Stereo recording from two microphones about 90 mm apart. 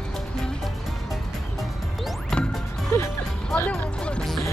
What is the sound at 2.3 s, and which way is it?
Music, 5° left (ahead or behind).